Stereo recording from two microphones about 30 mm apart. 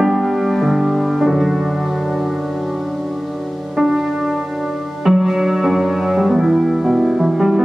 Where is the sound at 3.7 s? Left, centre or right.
Centre.